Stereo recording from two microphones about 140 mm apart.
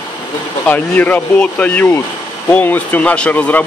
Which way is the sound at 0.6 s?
10° left (ahead or behind).